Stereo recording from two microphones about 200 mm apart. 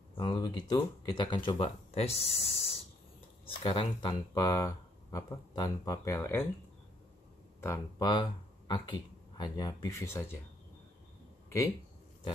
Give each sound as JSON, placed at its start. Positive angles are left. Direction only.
{"t": 0.2, "sound": "speech", "side_deg": 20}
{"t": 7.6, "sound": "speech", "side_deg": 20}